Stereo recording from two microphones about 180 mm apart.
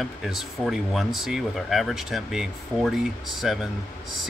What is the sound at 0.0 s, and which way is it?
Speech, centre (ahead or behind).